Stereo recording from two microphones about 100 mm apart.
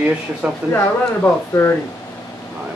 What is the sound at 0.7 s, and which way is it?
Speech, 20° left (ahead or behind).